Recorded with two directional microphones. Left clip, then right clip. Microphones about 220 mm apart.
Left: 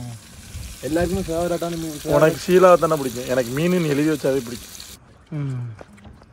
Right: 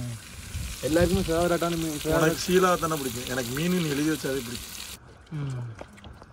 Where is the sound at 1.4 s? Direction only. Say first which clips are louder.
Left 2 dB; 25° right (ahead or behind).